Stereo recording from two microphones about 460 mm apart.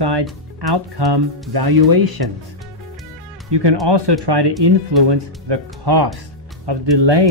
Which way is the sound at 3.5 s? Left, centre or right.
Right.